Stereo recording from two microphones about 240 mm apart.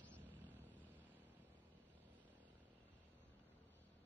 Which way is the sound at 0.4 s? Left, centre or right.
Centre.